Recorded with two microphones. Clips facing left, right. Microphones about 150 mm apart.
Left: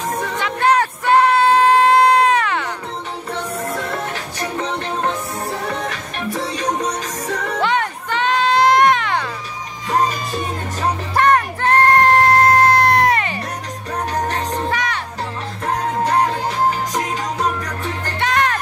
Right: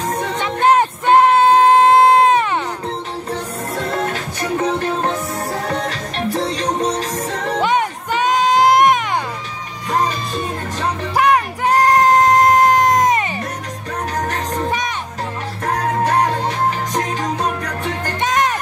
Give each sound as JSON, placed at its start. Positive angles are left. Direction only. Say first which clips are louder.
{"t": 0.4, "sound": "music", "louder": "right 2 dB", "side_deg": -20}
{"t": 6.8, "sound": "music", "louder": "right 4 dB", "side_deg": -30}
{"t": 7.5, "sound": "music", "louder": "right 3 dB", "side_deg": -15}
{"t": 11.1, "sound": "music", "louder": "right 1 dB", "side_deg": -10}
{"t": 14.7, "sound": "music", "louder": "even", "side_deg": -20}
{"t": 18.2, "sound": "music", "louder": "even", "side_deg": -20}